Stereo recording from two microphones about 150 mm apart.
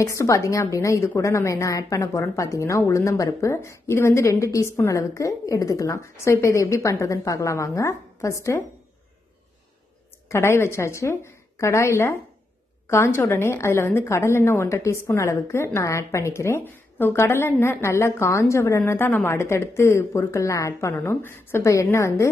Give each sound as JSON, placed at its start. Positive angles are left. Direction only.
{"t": 0.0, "sound": "a woman's voice", "side_deg": 20}
{"t": 10.2, "sound": "a woman's voice", "side_deg": 20}